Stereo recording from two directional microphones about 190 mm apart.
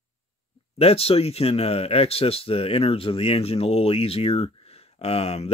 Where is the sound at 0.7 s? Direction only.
30° left (ahead or behind).